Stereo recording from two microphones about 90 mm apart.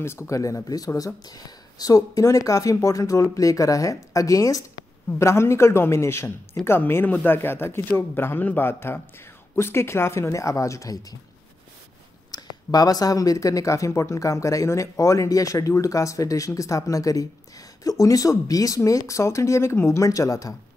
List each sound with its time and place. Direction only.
0.0 s speech: 30° left (ahead or behind)
12.3 s speech: 45° left (ahead or behind)